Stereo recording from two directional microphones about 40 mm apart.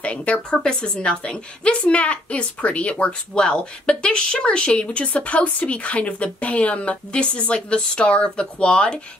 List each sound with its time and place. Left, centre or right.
0.0 s a woman's voice: left
0.6 s a woman's voice: left